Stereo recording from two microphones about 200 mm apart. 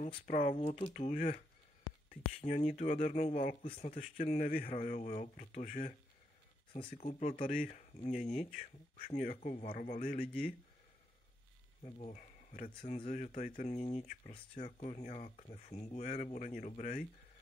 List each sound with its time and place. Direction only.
0.0 s speech: 35° left (ahead or behind)
2.4 s speech: 35° left (ahead or behind)
3.6 s speech: 30° left (ahead or behind)
6.7 s speech: 25° left (ahead or behind); by 10.2 s 40° left (ahead or behind)
11.8 s speech: 35° left (ahead or behind)